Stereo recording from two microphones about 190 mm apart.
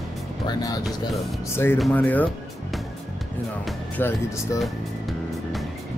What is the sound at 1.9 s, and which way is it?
Speech, 10° left (ahead or behind).